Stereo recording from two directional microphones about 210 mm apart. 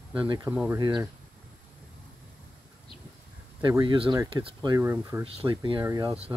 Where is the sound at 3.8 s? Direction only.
20° right (ahead or behind).